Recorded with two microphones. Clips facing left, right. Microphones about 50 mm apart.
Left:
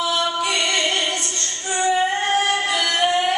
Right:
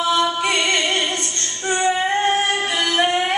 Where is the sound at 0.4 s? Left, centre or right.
Right.